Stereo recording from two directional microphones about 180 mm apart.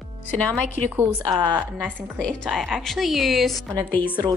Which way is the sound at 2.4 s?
Centre (ahead or behind).